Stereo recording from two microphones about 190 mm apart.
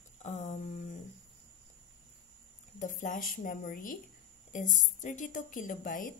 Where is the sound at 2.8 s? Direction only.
40° left (ahead or behind).